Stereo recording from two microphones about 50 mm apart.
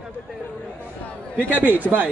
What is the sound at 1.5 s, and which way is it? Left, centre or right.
Speech, right.